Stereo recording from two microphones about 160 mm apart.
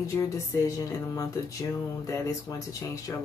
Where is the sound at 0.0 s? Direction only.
20° left (ahead or behind).